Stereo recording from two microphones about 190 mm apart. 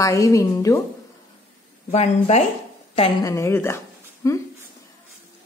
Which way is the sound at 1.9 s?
35° left (ahead or behind).